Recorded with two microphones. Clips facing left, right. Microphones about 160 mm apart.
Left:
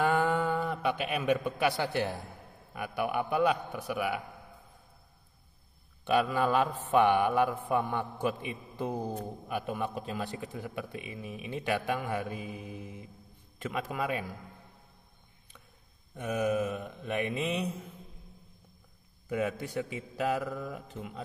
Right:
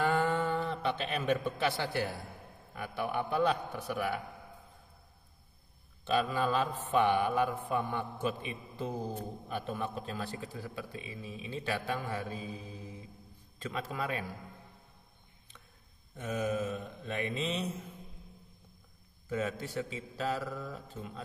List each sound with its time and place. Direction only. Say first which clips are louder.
0.0 s a sound: left 2 dB; 15° left (ahead or behind)
3.1 s a man's voice: left 2 dB; 10° left (ahead or behind)
6.0 s a man's voice: left 3 dB; 15° left (ahead or behind)
16.2 s a man's voice: left 4 dB; 15° left (ahead or behind)
19.2 s a man's voice: left 3 dB; 15° left (ahead or behind)